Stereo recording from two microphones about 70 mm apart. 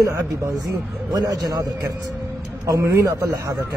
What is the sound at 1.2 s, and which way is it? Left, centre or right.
Speech, right.